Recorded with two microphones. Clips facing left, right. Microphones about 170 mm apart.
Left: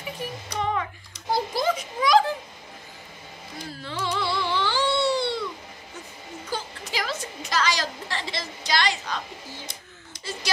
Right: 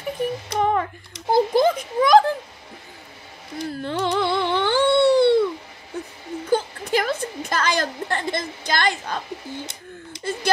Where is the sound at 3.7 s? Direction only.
55° right (ahead or behind).